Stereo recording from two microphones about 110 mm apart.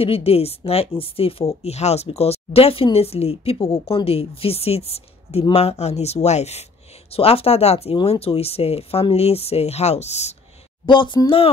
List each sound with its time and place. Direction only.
0.0 s speech: 60° left (ahead or behind)
1.5 s speech: 70° left (ahead or behind)
7.1 s speech: 60° left (ahead or behind); by 10.3 s 85° left
10.9 s speech: 45° left (ahead or behind)